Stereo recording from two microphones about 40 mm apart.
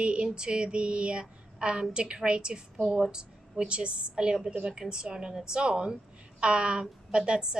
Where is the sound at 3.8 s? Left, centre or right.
Right.